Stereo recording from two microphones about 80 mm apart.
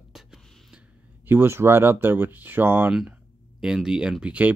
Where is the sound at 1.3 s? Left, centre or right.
Right.